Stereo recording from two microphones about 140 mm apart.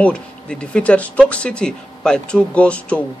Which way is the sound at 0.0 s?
5° left (ahead or behind).